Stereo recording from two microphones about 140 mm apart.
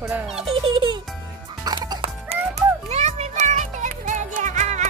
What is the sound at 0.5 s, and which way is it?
Music, 40° right (ahead or behind).